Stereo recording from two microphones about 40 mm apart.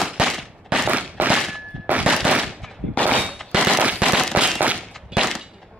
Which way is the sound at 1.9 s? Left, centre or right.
Right.